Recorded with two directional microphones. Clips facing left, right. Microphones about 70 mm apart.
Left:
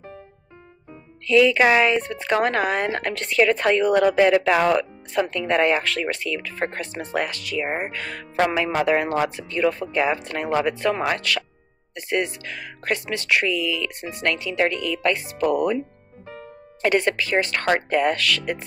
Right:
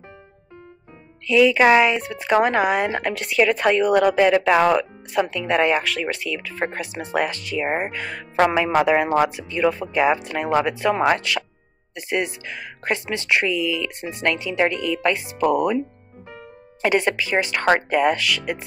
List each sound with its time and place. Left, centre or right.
1.2 s speech: centre
7.2 s speech: right
16.3 s music: centre
17.7 s speech: centre